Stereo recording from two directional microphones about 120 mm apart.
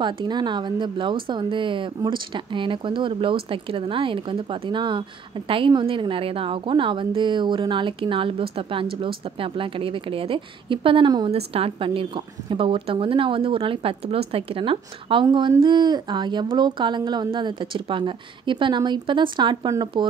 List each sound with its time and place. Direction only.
0.0 s speech: 40° right (ahead or behind)
11.3 s speech: 55° right (ahead or behind)